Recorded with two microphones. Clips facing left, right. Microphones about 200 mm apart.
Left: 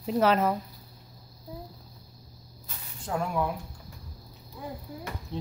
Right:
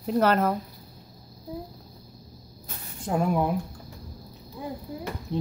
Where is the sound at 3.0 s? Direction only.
20° right (ahead or behind).